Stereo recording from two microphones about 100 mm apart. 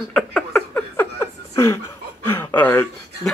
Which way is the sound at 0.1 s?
10° left (ahead or behind).